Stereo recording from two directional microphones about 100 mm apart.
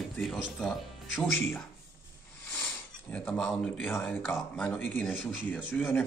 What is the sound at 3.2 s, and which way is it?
Speech, 15° left (ahead or behind).